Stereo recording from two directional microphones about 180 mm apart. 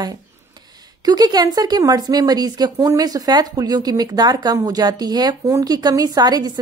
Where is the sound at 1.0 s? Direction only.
20° right (ahead or behind).